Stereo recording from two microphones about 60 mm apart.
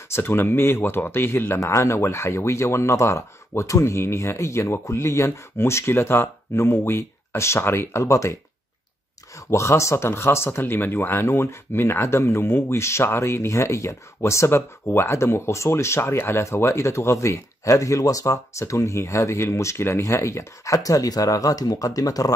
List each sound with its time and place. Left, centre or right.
0.1 s speech: left
1.6 s speech: left
9.5 s speech: left
10.6 s speech: left